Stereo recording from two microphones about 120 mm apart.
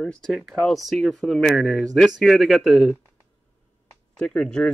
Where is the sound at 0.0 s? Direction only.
5° left (ahead or behind).